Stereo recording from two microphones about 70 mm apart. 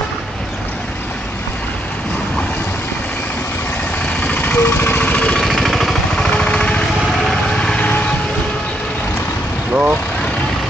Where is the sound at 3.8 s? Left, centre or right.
Centre.